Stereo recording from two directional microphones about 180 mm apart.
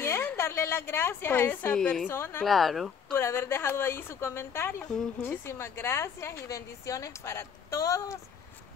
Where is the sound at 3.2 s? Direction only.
15° left (ahead or behind).